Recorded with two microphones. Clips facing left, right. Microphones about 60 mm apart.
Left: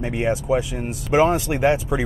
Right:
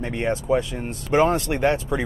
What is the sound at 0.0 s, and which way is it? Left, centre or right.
Speech, centre.